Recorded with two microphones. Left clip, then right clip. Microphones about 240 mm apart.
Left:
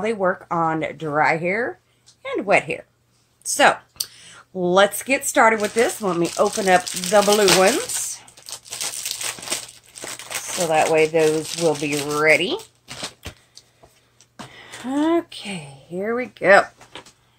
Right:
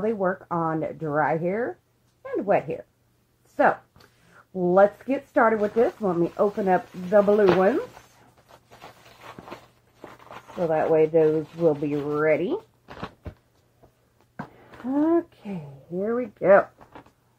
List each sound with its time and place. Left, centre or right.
0.0 s speech: left
4.6 s speech: left
10.2 s speech: centre
15.0 s speech: centre